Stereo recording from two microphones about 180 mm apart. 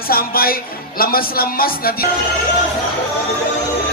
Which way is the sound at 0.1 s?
55° left (ahead or behind).